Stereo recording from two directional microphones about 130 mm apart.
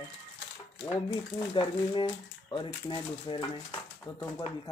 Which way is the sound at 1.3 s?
40° left (ahead or behind).